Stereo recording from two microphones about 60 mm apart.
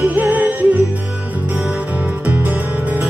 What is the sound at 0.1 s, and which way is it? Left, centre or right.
Music, right.